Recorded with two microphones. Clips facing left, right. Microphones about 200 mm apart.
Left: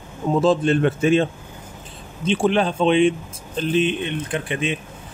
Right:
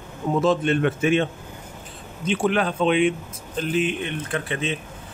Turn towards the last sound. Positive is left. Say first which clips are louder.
# left 2 dB
turn(degrees=15)  # may be behind; listen again after turning